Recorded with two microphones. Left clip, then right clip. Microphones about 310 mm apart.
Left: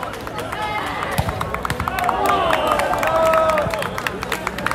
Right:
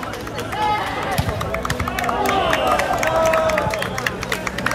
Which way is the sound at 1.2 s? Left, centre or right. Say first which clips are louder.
Even; centre.